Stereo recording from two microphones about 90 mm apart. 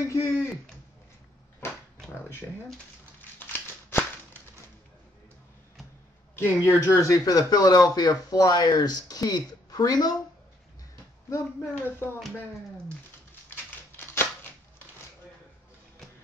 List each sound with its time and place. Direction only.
0.1 s speech: 30° left (ahead or behind)
1.6 s dog: 25° left (ahead or behind)
3.3 s a sound: 20° left (ahead or behind)
6.3 s speech: 30° left (ahead or behind); by 10.1 s 45° left (ahead or behind)
11.2 s speech: 35° left (ahead or behind)
11.8 s speech: 25° left (ahead or behind)
13.5 s typewriter: 25° left (ahead or behind)